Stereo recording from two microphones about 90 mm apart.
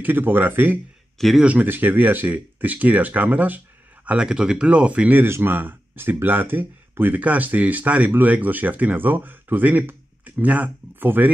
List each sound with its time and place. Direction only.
0.0 s speech: 20° right (ahead or behind)
1.1 s speech: centre (ahead or behind)
1.4 s speech: 15° right (ahead or behind)
5.2 s speech: 25° right (ahead or behind)